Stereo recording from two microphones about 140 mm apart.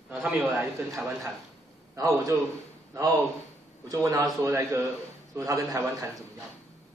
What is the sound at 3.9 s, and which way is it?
A man's voice, 25° right (ahead or behind).